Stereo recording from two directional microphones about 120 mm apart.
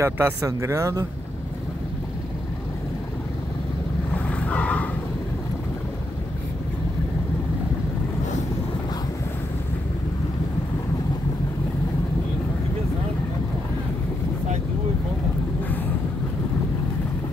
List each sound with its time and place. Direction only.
0.0 s speech: 25° right (ahead or behind)
4.3 s vehicle: 10° left (ahead or behind)